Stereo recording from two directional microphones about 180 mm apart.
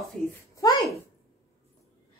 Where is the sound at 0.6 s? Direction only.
20° left (ahead or behind).